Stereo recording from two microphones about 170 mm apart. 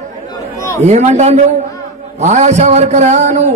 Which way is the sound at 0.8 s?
40° right (ahead or behind).